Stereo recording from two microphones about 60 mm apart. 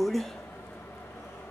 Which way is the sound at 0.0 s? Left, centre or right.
Centre.